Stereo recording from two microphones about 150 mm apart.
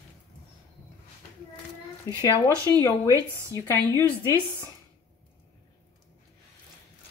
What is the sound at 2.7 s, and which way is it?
Speech, 20° left (ahead or behind).